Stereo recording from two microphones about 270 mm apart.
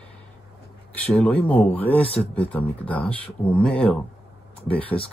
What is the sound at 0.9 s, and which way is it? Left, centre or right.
Speech, centre.